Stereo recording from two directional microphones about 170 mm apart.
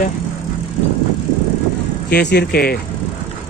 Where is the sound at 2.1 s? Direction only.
80° left.